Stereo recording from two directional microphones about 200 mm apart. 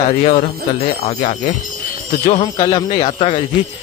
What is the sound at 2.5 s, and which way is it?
Speech, 25° left (ahead or behind).